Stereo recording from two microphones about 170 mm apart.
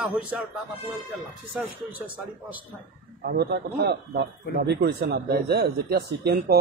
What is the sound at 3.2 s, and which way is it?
Speech, 70° right (ahead or behind).